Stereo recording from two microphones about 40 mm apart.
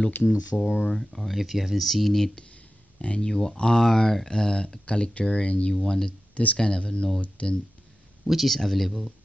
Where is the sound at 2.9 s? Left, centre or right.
Left.